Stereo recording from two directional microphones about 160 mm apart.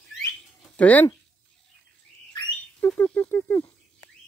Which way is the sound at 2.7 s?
15° left (ahead or behind).